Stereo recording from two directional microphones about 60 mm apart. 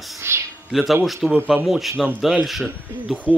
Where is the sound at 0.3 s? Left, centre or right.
Right.